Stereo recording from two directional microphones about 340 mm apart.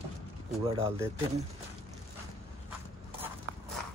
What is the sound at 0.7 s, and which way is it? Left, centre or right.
Speech, centre.